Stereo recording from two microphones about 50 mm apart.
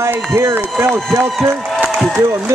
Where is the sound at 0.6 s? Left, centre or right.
Right.